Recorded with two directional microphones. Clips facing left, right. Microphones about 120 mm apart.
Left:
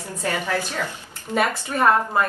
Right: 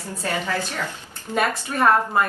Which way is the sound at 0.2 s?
15° left (ahead or behind).